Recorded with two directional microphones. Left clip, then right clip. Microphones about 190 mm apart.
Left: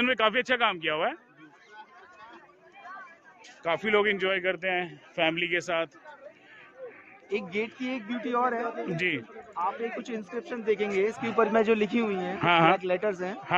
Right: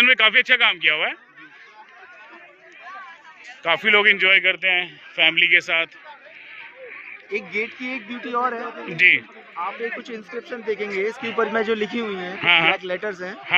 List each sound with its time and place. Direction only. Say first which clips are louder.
0.0 s a man's voice: right 10 dB; 30° left (ahead or behind)
3.6 s a man's voice: right 9 dB; 5° left (ahead or behind)
4.2 s a man's voice: right 11 dB; 30° left (ahead or behind)
7.2 s a man's voice: right 5 dB; 35° left (ahead or behind)
12.4 s speech: right 5 dB; 45° left (ahead or behind)
12.7 s a man's voice: right 1 dB; 25° left (ahead or behind)